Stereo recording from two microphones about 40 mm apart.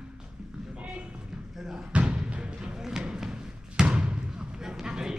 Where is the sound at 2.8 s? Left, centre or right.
Centre.